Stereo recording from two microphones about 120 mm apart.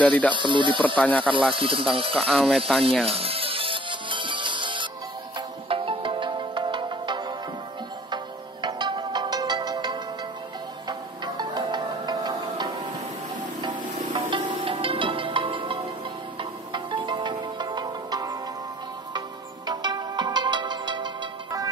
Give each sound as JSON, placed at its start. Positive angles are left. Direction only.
{"t": 0.0, "sound": "speech", "side_deg": 10}
{"t": 0.3, "sound": "speech", "side_deg": -40}
{"t": 0.9, "sound": "speech", "side_deg": 10}
{"t": 1.5, "sound": "speech", "side_deg": -45}
{"t": 2.1, "sound": "speech", "side_deg": 0}
{"t": 3.1, "sound": "music", "side_deg": -55}